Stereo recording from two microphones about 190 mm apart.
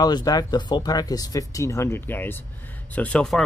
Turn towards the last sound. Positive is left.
turn(degrees=5)  # may be behind; listen again after turning